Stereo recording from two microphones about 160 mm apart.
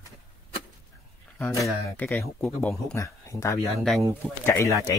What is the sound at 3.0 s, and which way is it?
Speech, 20° left (ahead or behind).